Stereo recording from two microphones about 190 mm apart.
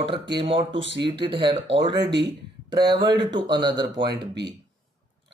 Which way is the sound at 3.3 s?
25° right (ahead or behind).